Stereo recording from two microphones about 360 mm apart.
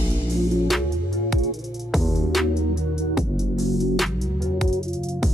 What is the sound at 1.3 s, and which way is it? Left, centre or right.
Music, centre.